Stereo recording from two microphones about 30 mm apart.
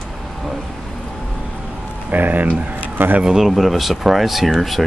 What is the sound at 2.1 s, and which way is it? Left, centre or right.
Speech, right.